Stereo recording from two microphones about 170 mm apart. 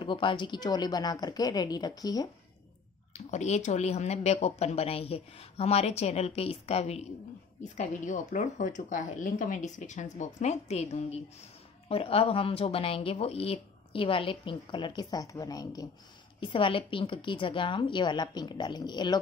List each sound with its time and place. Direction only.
0.0 s speech: 30° left (ahead or behind)
3.1 s speech: 40° left (ahead or behind); by 19.1 s 25° left (ahead or behind)